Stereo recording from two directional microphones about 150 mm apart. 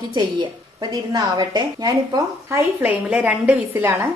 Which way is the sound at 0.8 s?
30° right (ahead or behind).